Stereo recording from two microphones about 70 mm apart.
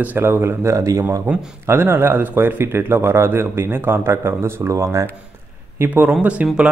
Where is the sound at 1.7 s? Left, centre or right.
Right.